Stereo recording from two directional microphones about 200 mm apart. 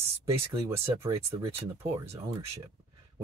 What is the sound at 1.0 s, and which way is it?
Speech, 30° right (ahead or behind).